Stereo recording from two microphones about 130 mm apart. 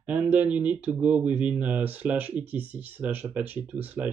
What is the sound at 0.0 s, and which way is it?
Speech, 10° right (ahead or behind).